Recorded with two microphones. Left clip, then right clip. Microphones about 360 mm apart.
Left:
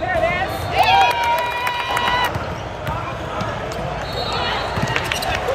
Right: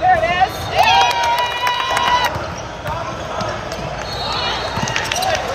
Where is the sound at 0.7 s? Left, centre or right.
Right.